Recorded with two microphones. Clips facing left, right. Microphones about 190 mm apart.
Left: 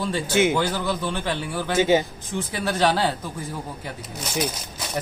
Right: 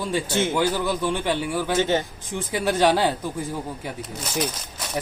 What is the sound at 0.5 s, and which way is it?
Speech, 15° right (ahead or behind).